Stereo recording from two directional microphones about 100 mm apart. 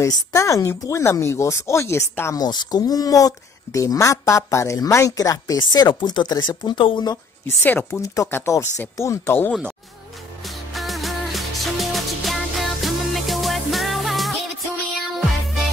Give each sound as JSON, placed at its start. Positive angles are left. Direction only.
{"t": 0.0, "sound": "speech", "side_deg": 30}
{"t": 2.3, "sound": "speech", "side_deg": 45}
{"t": 7.9, "sound": "speech", "side_deg": 35}
{"t": 10.7, "sound": "music", "side_deg": 0}